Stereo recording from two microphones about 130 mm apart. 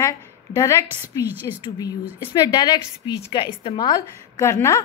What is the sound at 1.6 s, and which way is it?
A woman's voice, 30° left (ahead or behind).